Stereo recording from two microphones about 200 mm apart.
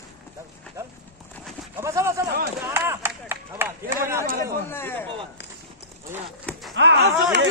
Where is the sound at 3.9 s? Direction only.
15° right (ahead or behind).